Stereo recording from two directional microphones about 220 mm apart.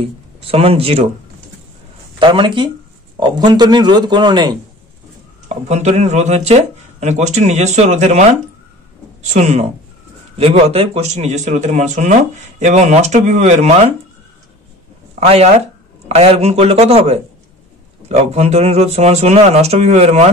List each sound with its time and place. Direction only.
0.0 s speech: 25° right (ahead or behind)
2.1 s speech: 20° right (ahead or behind)
5.5 s speech: 30° right (ahead or behind)
9.2 s speech: 30° right (ahead or behind)
15.1 s speech: 30° right (ahead or behind)